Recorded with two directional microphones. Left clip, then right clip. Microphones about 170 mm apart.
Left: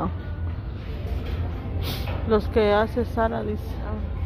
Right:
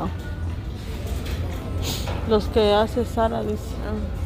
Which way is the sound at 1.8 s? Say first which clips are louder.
Right 2 dB; 5° right (ahead or behind).